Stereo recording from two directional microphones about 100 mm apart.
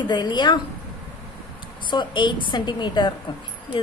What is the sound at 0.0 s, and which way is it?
Speech, 50° left (ahead or behind).